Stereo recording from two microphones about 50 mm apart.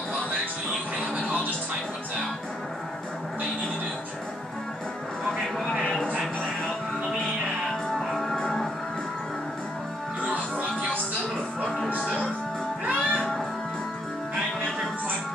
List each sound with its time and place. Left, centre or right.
7.9 s music: centre
10.2 s music: right
12.8 s music: right